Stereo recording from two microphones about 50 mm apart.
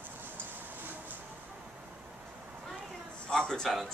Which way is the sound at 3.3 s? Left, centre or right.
Centre.